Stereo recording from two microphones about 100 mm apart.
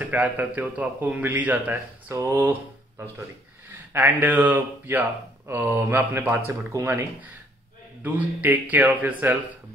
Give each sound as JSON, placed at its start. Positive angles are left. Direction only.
{"t": 0.0, "sound": "a man's voice", "side_deg": -15}
{"t": 3.6, "sound": "a man's voice", "side_deg": -20}